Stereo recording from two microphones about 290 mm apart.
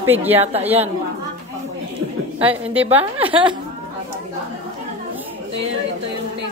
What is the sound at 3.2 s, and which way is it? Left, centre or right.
Speech, centre.